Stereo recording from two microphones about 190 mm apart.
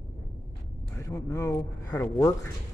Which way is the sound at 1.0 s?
15° left (ahead or behind).